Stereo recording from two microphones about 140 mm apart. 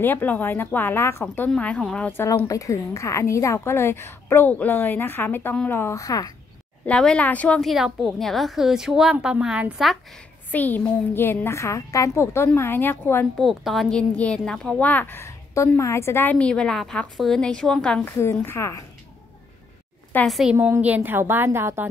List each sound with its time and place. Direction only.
0.0 s a woman's voice: 15° left (ahead or behind)
2.2 s a woman's voice: 25° left (ahead or behind)
6.9 s a woman's voice: 5° left (ahead or behind)
10.5 s a woman's voice: 15° left (ahead or behind)
13.4 s a woman's voice: centre (ahead or behind)
18.1 s a woman's voice: 20° left (ahead or behind)
20.2 s a woman's voice: centre (ahead or behind)
20.5 s a woman's voice: 15° right (ahead or behind)